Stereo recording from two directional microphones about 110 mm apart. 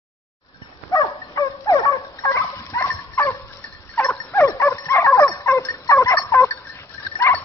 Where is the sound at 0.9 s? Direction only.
30° left (ahead or behind).